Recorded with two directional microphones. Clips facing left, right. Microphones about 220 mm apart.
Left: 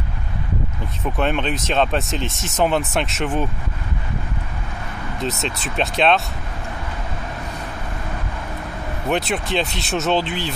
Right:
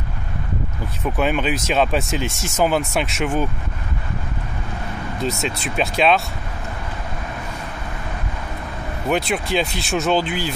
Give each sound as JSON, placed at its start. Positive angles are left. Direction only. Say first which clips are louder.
{"t": 1.0, "sound": "speech", "louder": "right 1 dB", "side_deg": 0}
{"t": 5.2, "sound": "speech", "louder": "right 1 dB", "side_deg": 0}
{"t": 9.1, "sound": "speech", "louder": "right 1 dB", "side_deg": 0}